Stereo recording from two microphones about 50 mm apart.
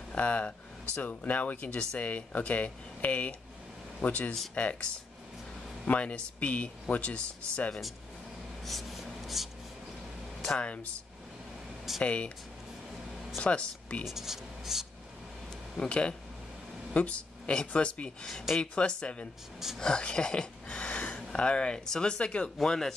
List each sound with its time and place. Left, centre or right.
0.1 s speech: left
5.9 s speech: left
8.6 s writing: centre
12.0 s speech: left
13.4 s speech: left
14.0 s speech: centre
15.8 s speech: centre
22.7 s speech: centre